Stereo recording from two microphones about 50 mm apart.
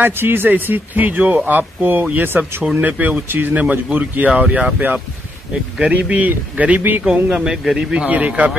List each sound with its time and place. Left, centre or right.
0.0 s speech: right
2.7 s speech: right
3.9 s speech: right
7.1 s speech: centre
8.1 s speech: right